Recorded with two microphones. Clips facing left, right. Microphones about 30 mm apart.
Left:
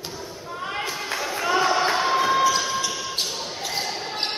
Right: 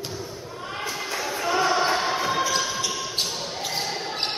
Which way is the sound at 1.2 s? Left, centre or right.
Centre.